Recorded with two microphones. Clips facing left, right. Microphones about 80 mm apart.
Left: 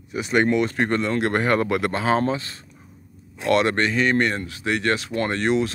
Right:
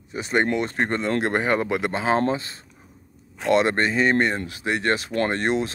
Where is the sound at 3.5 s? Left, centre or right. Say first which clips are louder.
Even; right.